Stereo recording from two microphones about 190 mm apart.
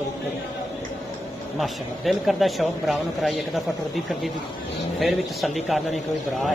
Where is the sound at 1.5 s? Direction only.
Centre (ahead or behind).